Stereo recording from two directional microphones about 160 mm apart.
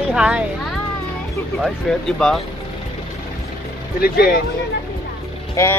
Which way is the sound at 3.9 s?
75° left (ahead or behind).